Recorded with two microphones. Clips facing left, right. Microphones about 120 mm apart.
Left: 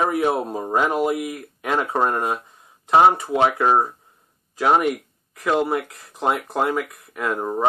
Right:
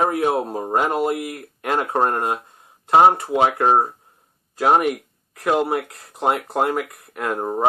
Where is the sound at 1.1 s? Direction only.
60° right (ahead or behind).